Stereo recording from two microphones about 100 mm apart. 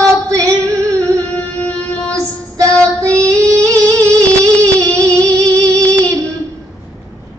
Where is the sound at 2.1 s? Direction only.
30° right (ahead or behind).